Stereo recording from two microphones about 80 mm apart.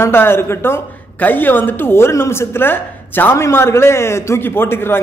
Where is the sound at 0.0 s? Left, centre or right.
Left.